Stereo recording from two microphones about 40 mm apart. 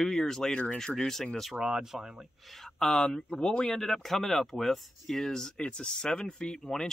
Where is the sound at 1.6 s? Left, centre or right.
Centre.